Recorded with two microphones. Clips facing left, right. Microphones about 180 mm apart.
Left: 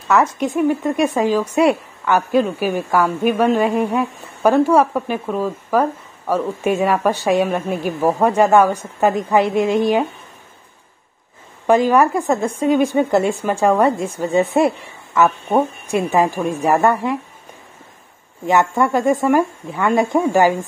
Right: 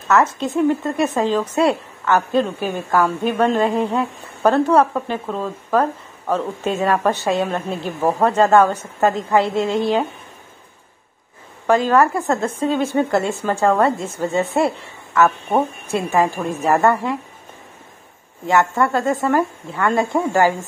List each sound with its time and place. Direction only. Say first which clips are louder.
0.1 s speech: left 1 dB; 15° left (ahead or behind)
11.6 s speech: left 2 dB; 15° left (ahead or behind)
18.4 s speech: left 1 dB; 20° left (ahead or behind)